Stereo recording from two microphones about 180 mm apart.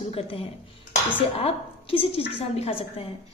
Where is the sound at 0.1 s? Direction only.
30° left (ahead or behind).